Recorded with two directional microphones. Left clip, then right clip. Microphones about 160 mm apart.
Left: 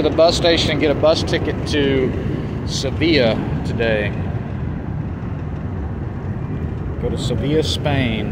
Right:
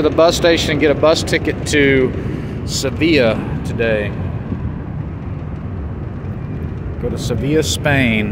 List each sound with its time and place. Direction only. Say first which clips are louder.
0.0 s speech: right 2 dB; 55° right (ahead or behind)
1.1 s speech: right 3 dB; 70° right (ahead or behind)
2.7 s speech: right 3 dB; 45° right (ahead or behind); by 4.1 s 25° right (ahead or behind)
7.2 s speech: right 3 dB; 50° right (ahead or behind)